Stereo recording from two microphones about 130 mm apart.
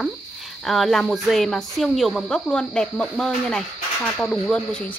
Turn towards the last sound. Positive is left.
turn(degrees=5)  # may be behind; listen again after turning